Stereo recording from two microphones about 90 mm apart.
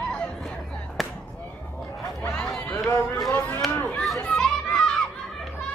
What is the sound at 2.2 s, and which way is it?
Run, 10° left (ahead or behind).